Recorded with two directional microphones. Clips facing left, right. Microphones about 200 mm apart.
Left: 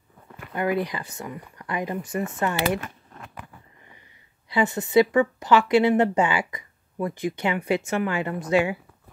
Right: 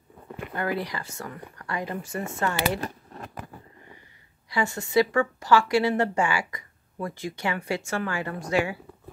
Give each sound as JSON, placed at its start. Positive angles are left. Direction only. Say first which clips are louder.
{"t": 0.6, "sound": "speech", "louder": "left 4 dB", "side_deg": 20}
{"t": 2.8, "sound": "a sound", "louder": "right 5 dB", "side_deg": -35}
{"t": 4.5, "sound": "speech", "louder": "left 4 dB", "side_deg": 20}